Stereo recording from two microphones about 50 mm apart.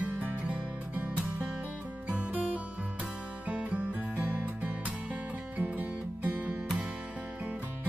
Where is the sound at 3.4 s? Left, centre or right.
Right.